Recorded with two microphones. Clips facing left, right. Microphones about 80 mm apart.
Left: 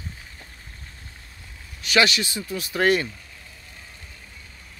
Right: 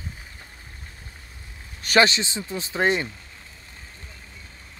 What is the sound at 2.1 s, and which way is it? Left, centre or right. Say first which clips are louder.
Speech: left 1 dB; right.